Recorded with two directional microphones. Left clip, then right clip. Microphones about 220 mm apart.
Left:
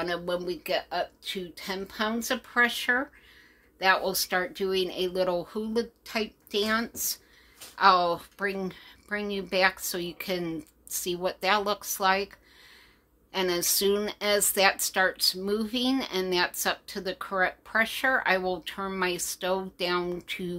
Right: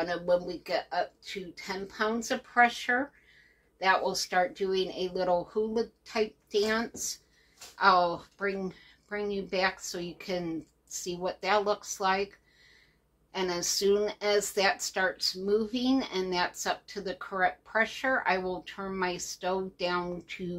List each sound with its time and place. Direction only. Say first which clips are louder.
0.0 s speech: right 2 dB; 50° left (ahead or behind)
13.3 s speech: left 4 dB; 50° left (ahead or behind)